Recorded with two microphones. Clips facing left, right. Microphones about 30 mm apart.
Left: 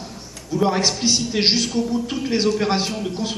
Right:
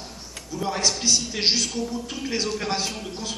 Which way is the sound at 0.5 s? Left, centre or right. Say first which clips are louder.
Left 6 dB; left.